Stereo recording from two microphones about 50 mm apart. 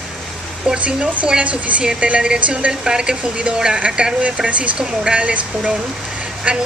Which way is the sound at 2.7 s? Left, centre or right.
Centre.